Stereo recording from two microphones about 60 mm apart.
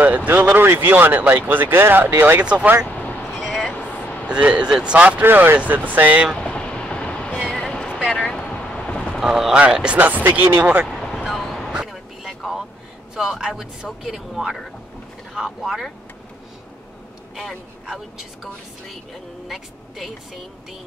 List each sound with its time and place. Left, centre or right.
0.0 s a sound: right
0.3 s speech: right
2.4 s speech: right
2.9 s vehicle: left
4.3 s speech: centre
5.2 s speech: right
6.3 s vehicle: centre
7.4 s a sound: centre
8.3 s vehicle: centre
9.2 s speech: centre
10.2 s speech: right
10.9 s vehicle: centre
13.1 s speech: centre
17.9 s speech: centre